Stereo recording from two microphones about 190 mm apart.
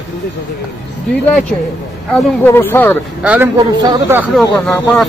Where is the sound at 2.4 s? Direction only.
10° left (ahead or behind).